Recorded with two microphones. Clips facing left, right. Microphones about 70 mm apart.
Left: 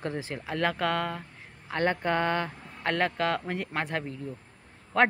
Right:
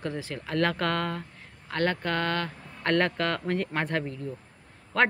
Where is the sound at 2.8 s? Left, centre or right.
Centre.